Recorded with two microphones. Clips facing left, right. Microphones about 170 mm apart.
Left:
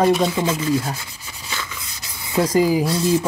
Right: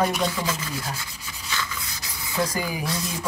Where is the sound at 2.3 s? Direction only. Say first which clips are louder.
Left 10 dB; 30° left (ahead or behind).